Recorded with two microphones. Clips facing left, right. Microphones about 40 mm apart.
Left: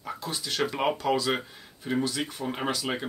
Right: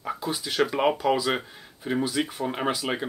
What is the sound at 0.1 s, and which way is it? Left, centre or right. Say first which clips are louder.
Speech: right 3 dB; centre.